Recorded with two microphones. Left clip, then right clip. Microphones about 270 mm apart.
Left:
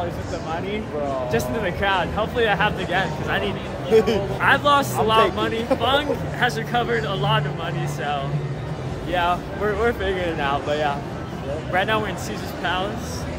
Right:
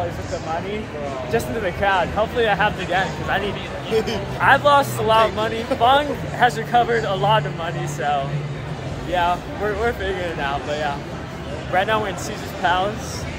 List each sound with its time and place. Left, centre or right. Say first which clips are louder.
1.3 s speech: right 1 dB; centre
3.9 s a woman's voice: left 5 dB; left
4.4 s speech: right 4 dB; centre